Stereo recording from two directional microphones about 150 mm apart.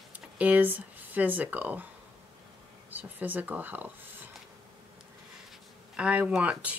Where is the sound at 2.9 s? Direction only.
10° right (ahead or behind).